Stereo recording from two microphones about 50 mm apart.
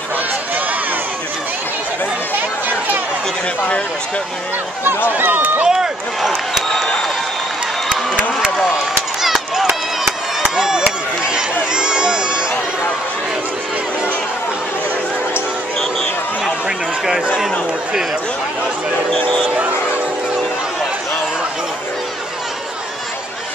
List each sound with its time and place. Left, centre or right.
5.1 s speech: right
5.7 s speech: centre
9.2 s run: centre
10.5 s chop: centre
11.2 s run: centre
15.8 s a sound: centre
16.6 s a sound: centre